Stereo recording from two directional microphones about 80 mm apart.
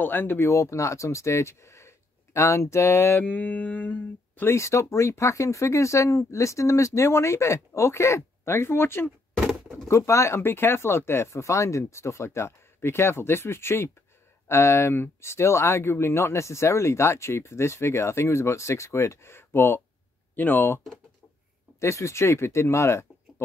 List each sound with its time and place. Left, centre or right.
0.0 s speech: left
0.5 s speech: left
4.6 s speech: left
9.4 s bird: centre
9.8 s speech: left